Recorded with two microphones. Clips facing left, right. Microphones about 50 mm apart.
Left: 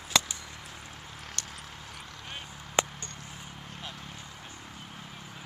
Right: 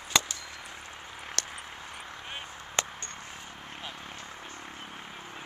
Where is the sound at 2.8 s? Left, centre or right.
Centre.